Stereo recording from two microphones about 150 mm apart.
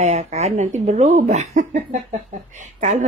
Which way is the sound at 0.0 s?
45° right (ahead or behind).